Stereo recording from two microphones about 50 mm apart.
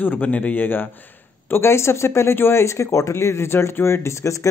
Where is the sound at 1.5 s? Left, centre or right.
Left.